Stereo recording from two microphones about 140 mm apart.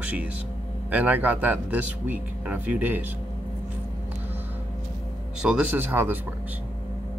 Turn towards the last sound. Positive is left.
turn(degrees=-15)  # may be behind; listen again after turning